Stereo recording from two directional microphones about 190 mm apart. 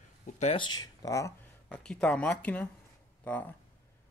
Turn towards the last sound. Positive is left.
turn(degrees=5)  # may be behind; listen again after turning